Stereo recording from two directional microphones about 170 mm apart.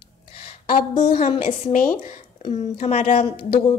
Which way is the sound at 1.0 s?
40° left (ahead or behind).